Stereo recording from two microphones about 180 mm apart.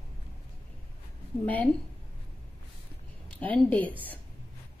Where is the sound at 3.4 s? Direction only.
10° left (ahead or behind).